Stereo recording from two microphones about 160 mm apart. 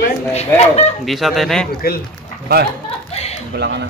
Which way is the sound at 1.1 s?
Centre (ahead or behind).